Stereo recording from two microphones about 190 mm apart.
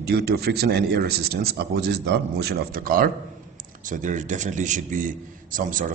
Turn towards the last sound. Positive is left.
turn(degrees=-45)  # may be behind; listen again after turning